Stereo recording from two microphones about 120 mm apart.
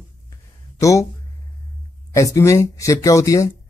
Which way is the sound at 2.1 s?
25° left (ahead or behind).